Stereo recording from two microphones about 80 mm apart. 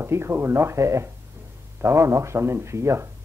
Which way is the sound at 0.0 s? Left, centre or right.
Right.